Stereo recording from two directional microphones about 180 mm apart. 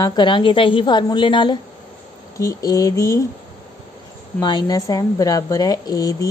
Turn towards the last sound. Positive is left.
turn(degrees=20)  # may be behind; listen again after turning